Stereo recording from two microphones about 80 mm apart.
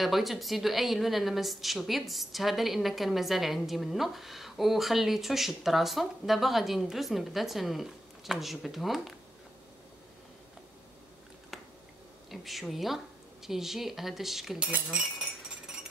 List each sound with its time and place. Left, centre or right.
0.0 s a woman's voice: centre
12.3 s a woman's voice: centre